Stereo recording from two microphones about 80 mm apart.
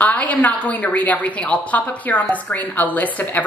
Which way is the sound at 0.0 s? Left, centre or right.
Centre.